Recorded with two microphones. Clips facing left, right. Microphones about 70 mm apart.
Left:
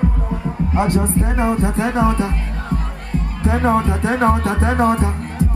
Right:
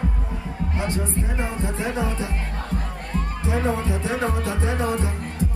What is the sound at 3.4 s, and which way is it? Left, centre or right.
Music, left.